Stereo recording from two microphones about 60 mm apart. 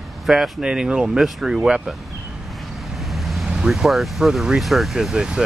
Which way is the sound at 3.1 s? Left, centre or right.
Centre.